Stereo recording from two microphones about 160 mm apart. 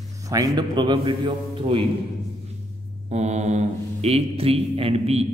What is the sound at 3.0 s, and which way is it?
Speech, 45° right (ahead or behind).